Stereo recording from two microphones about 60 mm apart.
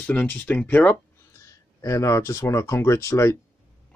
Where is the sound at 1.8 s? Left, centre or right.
Left.